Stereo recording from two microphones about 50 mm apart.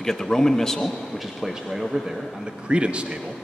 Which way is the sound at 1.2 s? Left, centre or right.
Centre.